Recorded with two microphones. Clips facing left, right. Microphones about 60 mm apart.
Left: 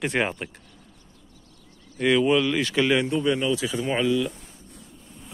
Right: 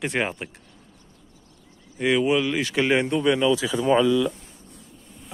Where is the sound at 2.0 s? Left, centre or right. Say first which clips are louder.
Left 1 dB; centre.